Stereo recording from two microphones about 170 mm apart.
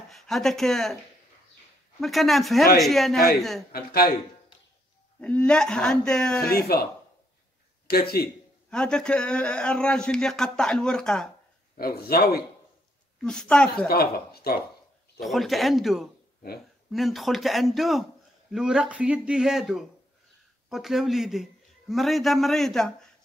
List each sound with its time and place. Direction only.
0.1 s a man's voice: centre (ahead or behind)
2.0 s a man's voice: centre (ahead or behind)
3.7 s a man's voice: 60° left (ahead or behind)
5.2 s a man's voice: 5° left (ahead or behind)
6.4 s a man's voice: 65° left (ahead or behind)
7.9 s a man's voice: 65° left (ahead or behind)
8.6 s a man's voice: 5° left (ahead or behind)
11.7 s a man's voice: 65° left (ahead or behind)
13.2 s a man's voice: 5° left (ahead or behind)
13.8 s a man's voice: 65° left (ahead or behind)
15.1 s a man's voice: centre (ahead or behind)